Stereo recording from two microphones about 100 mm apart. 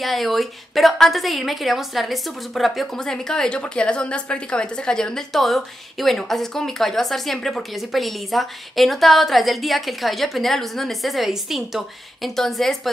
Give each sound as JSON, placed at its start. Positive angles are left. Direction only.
{"t": 0.0, "sound": "a woman's voice", "side_deg": 0}